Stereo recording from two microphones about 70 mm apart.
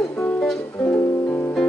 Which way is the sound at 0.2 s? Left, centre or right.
Centre.